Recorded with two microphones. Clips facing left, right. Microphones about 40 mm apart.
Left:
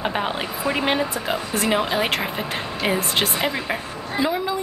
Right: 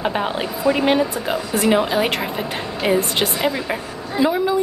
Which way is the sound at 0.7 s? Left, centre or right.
Left.